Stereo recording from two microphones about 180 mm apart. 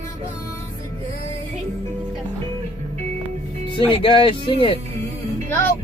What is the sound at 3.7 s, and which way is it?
Speech, 30° left (ahead or behind).